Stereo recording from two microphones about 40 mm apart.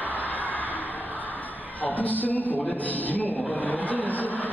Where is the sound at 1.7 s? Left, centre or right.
Left.